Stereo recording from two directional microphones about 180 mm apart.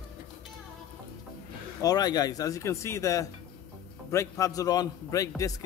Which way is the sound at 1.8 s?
20° left (ahead or behind).